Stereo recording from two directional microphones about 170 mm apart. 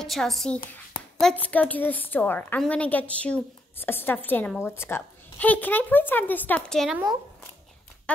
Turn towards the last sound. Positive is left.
turn(degrees=5)  # may be behind; listen again after turning